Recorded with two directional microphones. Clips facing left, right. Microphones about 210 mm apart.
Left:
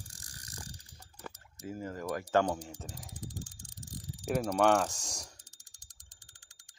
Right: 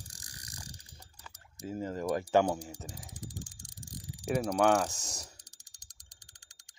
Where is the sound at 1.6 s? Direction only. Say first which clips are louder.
Right 3 dB; 25° right (ahead or behind).